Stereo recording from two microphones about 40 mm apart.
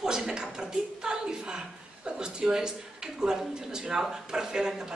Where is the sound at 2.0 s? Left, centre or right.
Centre.